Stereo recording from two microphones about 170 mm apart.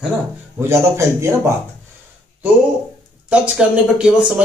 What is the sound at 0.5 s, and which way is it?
Speech, 15° right (ahead or behind).